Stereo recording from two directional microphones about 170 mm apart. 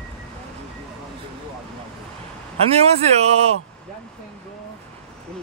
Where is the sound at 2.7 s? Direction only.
40° right (ahead or behind).